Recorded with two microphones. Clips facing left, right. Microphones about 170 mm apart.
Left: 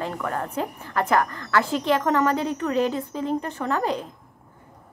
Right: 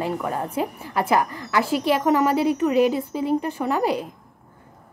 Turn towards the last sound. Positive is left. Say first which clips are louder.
# right 3 dB
turn(degrees=-10)  # may be behind; listen again after turning